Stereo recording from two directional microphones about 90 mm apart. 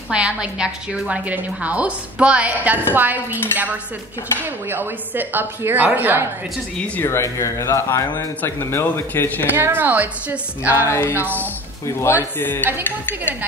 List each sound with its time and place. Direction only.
0.1 s a woman's voice: 10° right (ahead or behind)
7.0 s speech: 30° left (ahead or behind)
9.6 s speech: 20° right (ahead or behind)
10.9 s speech: 30° left (ahead or behind)
11.1 s speech: 20° right (ahead or behind)
12.0 s speech: 25° left (ahead or behind)